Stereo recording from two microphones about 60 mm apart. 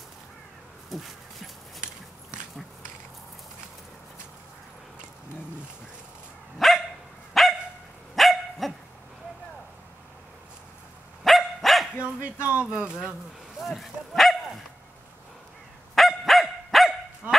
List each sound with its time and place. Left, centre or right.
0.8 s a sound: centre
6.6 s dog: centre
11.2 s dog: centre
12.0 s speech: right
13.6 s speech: centre
15.9 s dog: centre